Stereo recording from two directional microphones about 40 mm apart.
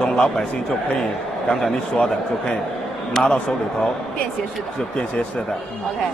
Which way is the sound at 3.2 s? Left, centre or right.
Centre.